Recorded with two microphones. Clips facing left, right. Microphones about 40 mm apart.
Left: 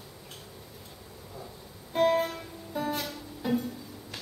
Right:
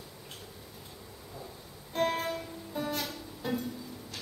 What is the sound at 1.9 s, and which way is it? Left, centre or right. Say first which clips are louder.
Music: left 5 dB; centre.